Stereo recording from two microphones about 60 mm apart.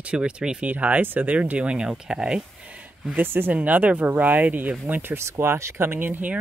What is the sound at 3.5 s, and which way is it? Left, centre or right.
Speech, right.